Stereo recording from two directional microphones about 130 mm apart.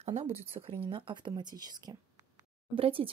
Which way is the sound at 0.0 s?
60° right (ahead or behind).